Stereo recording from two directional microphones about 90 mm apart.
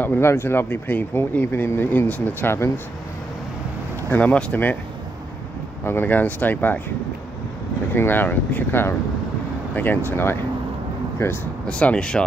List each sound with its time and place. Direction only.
0.0 s speech: 25° left (ahead or behind)
4.1 s speech: 15° left (ahead or behind)
5.9 s speech: 20° left (ahead or behind)
7.9 s speech: 20° left (ahead or behind)
11.6 s speech: 15° left (ahead or behind)